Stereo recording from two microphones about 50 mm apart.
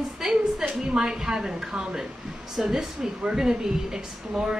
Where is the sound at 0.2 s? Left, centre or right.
Centre.